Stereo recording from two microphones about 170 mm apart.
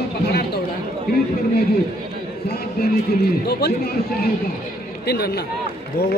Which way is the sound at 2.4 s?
65° left (ahead or behind).